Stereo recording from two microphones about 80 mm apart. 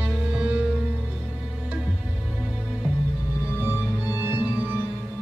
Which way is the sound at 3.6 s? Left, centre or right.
Right.